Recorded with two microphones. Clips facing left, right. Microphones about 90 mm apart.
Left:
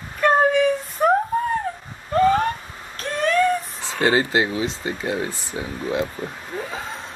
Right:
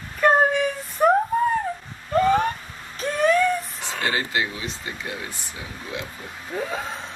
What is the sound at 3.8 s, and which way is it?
Speech, 30° left (ahead or behind).